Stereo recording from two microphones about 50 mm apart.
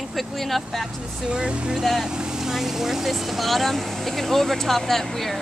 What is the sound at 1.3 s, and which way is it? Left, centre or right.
Speech, right.